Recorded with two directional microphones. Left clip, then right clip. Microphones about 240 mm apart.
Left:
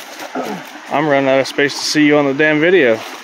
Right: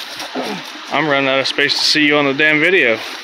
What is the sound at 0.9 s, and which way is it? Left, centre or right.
Speech, centre.